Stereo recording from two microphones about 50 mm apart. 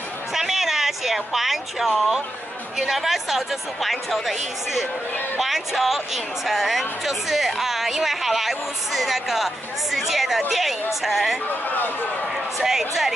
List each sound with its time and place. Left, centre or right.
0.3 s a sound: centre
2.8 s speech: centre
11.6 s speech: left
12.5 s speech: centre